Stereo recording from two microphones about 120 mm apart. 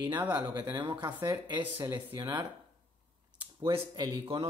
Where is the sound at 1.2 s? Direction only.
15° right (ahead or behind).